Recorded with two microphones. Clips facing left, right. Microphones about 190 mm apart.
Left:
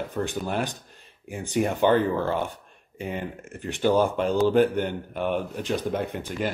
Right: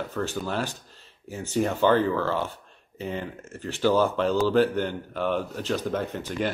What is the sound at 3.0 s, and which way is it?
Speech, 15° left (ahead or behind).